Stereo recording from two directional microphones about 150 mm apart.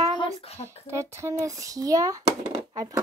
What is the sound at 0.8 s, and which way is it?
A child's voice, 20° right (ahead or behind).